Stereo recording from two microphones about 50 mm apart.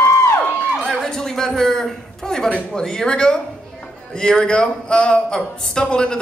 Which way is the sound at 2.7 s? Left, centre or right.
Centre.